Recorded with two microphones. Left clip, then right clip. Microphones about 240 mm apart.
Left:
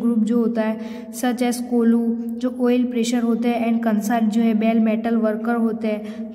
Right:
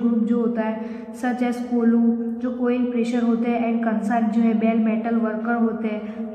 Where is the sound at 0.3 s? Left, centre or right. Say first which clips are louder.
Left 2 dB; left.